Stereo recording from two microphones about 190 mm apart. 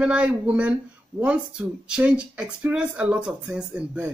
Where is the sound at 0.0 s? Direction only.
5° right (ahead or behind).